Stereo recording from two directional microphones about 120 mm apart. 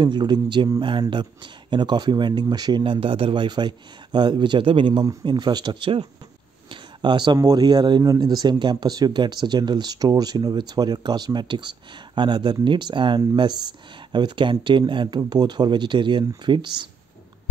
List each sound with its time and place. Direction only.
0.0 s speech: 40° right (ahead or behind)
6.7 s a sound: 40° right (ahead or behind)
7.3 s speech: 35° right (ahead or behind)